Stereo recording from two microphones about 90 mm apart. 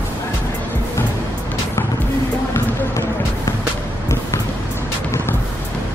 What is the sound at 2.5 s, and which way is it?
Basketball bounce, 35° left (ahead or behind).